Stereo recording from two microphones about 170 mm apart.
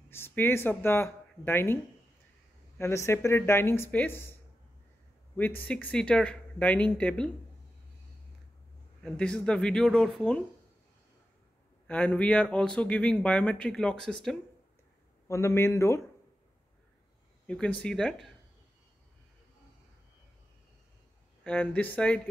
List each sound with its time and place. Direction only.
0.1 s speech: 15° left (ahead or behind)
2.8 s speech: 15° left (ahead or behind)
5.3 s speech: 10° left (ahead or behind)
9.0 s speech: 5° left (ahead or behind)
11.9 s speech: 10° left (ahead or behind)
15.2 s speech: 15° left (ahead or behind)
17.5 s speech: 5° left (ahead or behind)
21.5 s speech: 10° left (ahead or behind)